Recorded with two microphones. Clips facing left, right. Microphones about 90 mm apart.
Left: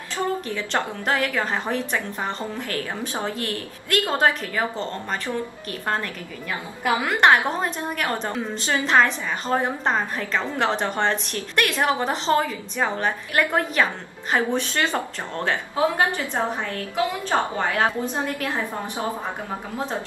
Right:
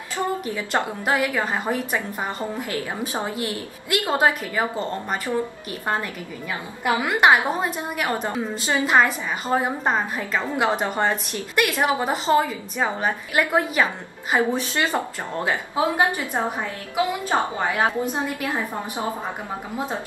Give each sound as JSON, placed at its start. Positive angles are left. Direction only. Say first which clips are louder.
{"t": 0.2, "sound": "a woman's voice", "louder": "even", "side_deg": -15}
{"t": 7.1, "sound": "a woman's voice", "louder": "even", "side_deg": -5}